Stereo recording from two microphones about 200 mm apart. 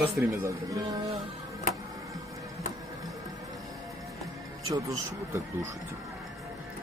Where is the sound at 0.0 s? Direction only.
10° right (ahead or behind).